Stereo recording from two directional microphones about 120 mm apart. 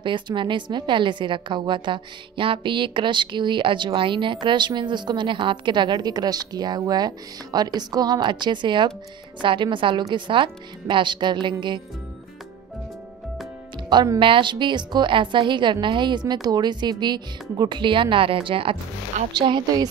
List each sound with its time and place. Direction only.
0.0 s a woman's voice: 40° right (ahead or behind)
13.8 s a woman's voice: 35° right (ahead or behind)